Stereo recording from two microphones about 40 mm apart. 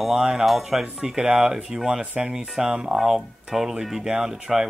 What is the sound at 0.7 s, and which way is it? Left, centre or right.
Speech, centre.